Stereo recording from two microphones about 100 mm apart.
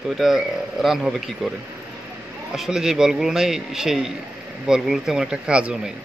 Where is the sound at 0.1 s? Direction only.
Centre (ahead or behind).